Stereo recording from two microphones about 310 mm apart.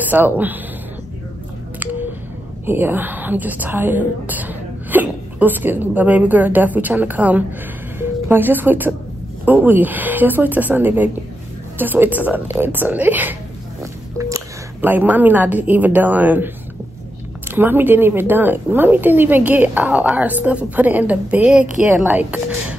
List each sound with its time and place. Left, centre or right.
0.0 s a woman's voice: centre
2.6 s a woman's voice: centre
17.5 s a woman's voice: centre